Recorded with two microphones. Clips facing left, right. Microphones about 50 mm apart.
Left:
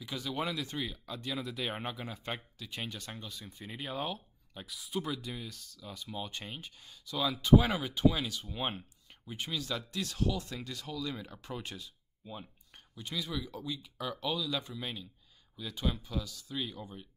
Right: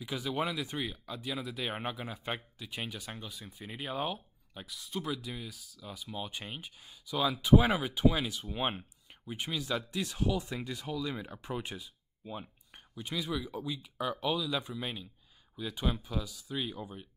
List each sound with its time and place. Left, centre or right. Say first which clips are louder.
0.0 s speech: right 2 dB; centre